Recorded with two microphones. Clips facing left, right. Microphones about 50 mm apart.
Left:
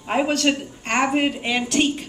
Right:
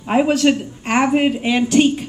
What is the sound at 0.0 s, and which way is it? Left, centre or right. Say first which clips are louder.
A woman's voice: right 5 dB; centre.